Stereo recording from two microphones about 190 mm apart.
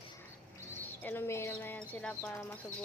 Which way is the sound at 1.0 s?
10° left (ahead or behind).